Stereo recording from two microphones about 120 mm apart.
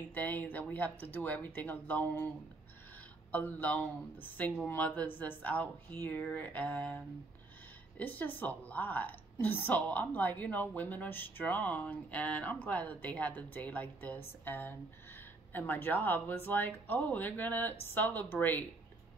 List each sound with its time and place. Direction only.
0.1 s a woman's voice: 15° left (ahead or behind)
3.3 s a woman's voice: 15° left (ahead or behind)
8.0 s a woman's voice: 15° left (ahead or behind)